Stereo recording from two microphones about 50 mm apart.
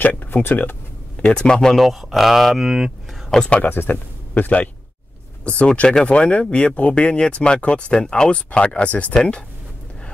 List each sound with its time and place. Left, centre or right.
0.0 s a sound: left
1.2 s speech: centre
1.8 s speech: centre
3.4 s speech: left
3.7 s speech: left
5.7 s speech: centre